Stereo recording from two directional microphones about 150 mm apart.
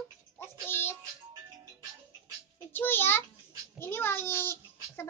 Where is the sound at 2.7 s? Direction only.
15° left (ahead or behind).